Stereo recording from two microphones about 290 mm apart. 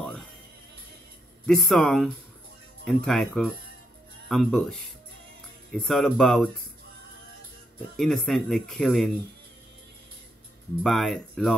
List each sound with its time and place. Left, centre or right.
1.4 s speech: centre
7.9 s speech: centre
10.8 s speech: centre